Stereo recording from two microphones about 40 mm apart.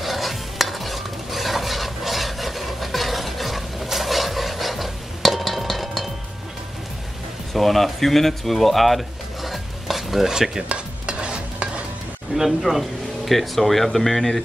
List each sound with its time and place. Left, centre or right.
0.0 s stir: centre
7.5 s speech: centre
10.7 s stir: right
12.4 s speech: centre